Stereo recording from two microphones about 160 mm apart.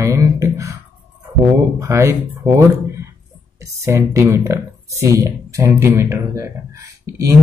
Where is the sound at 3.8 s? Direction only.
15° right (ahead or behind).